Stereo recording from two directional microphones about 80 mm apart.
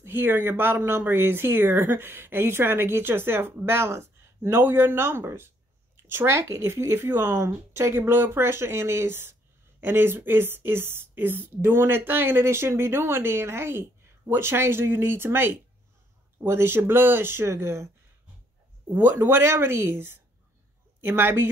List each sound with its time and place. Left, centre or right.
0.0 s speech: right